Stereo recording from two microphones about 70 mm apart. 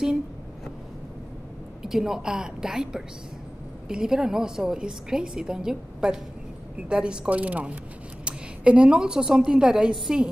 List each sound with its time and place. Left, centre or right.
1.8 s a woman's voice: centre